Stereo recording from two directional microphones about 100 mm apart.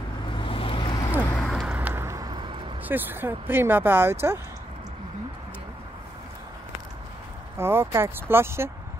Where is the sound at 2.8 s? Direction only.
20° right (ahead or behind).